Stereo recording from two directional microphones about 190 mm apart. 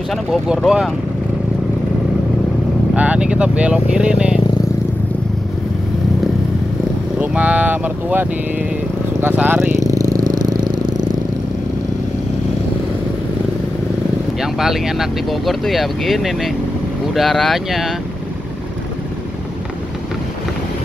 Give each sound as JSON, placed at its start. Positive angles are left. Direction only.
{"t": 0.1, "sound": "speech", "side_deg": 0}
{"t": 2.9, "sound": "speech", "side_deg": -5}
{"t": 7.2, "sound": "speech", "side_deg": -5}
{"t": 9.8, "sound": "vehicle", "side_deg": -20}
{"t": 14.4, "sound": "speech", "side_deg": 0}